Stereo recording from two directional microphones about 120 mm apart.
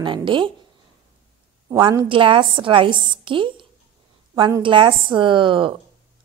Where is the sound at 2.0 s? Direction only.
45° right (ahead or behind).